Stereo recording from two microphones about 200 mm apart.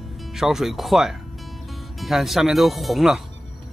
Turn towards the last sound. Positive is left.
turn(degrees=0)  # may be behind; listen again after turning